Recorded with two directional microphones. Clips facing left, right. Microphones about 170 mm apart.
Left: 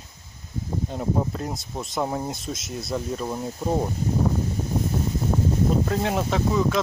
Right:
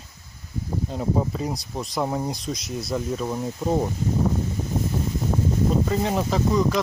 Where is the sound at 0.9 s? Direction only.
Centre (ahead or behind).